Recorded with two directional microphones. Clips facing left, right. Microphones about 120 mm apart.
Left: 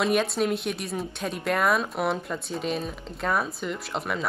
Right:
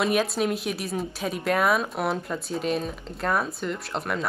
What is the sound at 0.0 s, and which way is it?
Speech, centre (ahead or behind).